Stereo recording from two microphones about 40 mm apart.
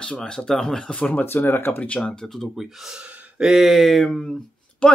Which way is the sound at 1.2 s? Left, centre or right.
Left.